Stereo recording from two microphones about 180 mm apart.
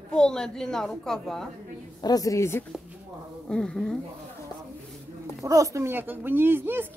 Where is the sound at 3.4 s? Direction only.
5° left (ahead or behind).